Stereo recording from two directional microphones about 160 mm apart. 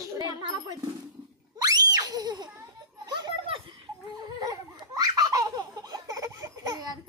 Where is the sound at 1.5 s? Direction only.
25° right (ahead or behind).